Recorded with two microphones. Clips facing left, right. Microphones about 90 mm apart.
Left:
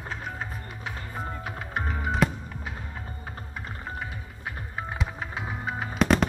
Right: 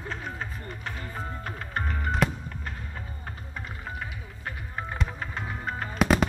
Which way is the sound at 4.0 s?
5° left (ahead or behind).